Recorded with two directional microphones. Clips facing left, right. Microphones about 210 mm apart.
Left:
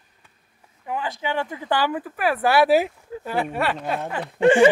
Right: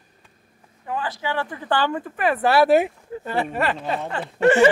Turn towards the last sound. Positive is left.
turn(degrees=15)  # may be behind; listen again after turning